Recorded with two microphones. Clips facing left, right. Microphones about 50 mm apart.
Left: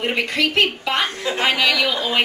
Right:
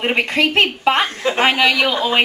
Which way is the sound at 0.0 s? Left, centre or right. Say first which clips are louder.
Right 3 dB; right.